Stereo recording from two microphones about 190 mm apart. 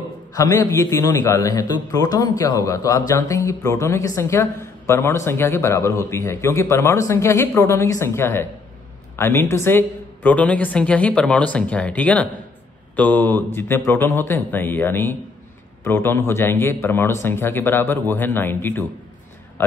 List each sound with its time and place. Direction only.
0.3 s a woman's voice: 20° left (ahead or behind)